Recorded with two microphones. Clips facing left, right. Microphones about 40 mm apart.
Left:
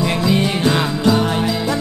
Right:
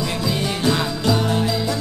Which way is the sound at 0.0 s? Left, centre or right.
Left.